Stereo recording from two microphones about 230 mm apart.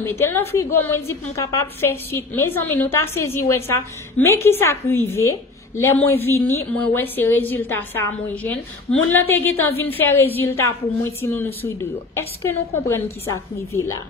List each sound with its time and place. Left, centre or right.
0.0 s a woman's voice: centre